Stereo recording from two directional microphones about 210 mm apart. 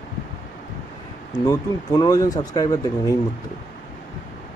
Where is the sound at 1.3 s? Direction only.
15° left (ahead or behind).